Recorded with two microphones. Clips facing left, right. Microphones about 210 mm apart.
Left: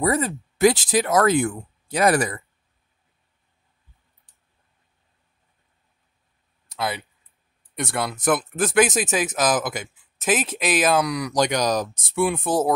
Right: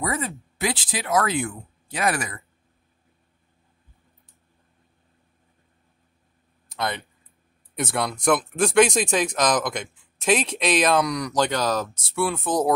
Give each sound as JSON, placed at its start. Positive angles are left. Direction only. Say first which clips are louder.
{"t": 0.0, "sound": "speech", "louder": "left 6 dB", "side_deg": 40}
{"t": 6.7, "sound": "speech", "louder": "left 1 dB", "side_deg": 5}